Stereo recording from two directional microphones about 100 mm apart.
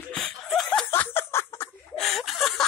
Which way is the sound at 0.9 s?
20° left (ahead or behind).